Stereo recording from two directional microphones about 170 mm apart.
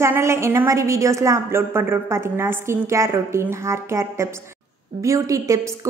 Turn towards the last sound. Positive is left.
turn(degrees=-20)  # may be behind; listen again after turning